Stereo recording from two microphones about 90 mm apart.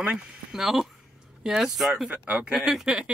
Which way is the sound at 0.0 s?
10° right (ahead or behind).